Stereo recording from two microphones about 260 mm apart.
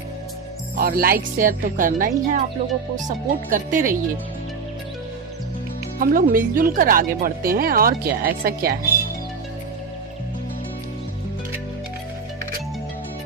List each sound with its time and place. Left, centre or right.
0.7 s speech: right
5.9 s speech: right